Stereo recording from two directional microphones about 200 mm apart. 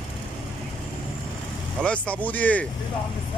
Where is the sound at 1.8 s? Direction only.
5° left (ahead or behind).